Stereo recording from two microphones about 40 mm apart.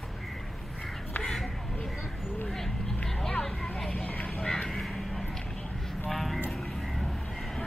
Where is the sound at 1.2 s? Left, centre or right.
Centre.